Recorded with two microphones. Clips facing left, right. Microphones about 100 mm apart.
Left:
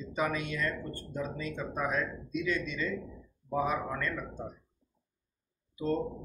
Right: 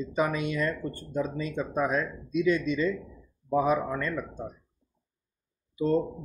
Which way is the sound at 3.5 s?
15° right (ahead or behind).